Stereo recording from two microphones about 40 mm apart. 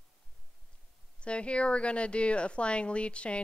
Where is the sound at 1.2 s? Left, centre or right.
Left.